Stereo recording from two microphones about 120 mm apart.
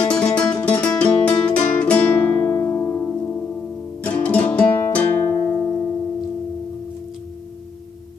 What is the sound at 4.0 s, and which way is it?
Music, 10° left (ahead or behind).